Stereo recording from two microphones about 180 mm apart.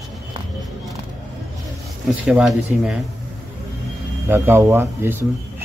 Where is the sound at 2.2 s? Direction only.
5° right (ahead or behind).